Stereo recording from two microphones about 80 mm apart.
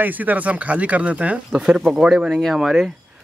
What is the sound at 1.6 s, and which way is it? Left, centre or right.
Speech, centre.